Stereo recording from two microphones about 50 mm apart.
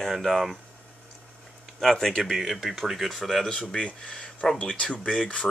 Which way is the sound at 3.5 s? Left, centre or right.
Centre.